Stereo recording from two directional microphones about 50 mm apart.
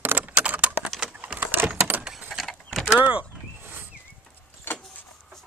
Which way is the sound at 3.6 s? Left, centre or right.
Right.